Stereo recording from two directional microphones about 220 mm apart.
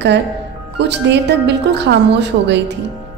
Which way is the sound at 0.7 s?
50° right (ahead or behind).